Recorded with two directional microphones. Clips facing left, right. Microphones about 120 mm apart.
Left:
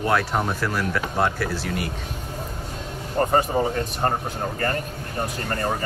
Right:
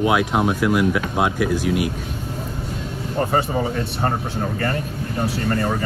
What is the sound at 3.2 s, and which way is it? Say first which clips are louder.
Speech: left 1 dB; 30° left (ahead or behind).